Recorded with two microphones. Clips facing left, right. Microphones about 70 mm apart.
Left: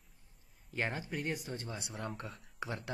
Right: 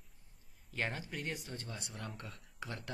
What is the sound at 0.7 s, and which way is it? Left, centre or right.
Speech, centre.